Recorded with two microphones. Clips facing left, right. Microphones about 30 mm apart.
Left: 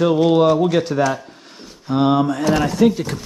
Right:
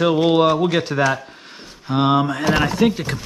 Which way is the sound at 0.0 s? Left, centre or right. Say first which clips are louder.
Left 1 dB; centre.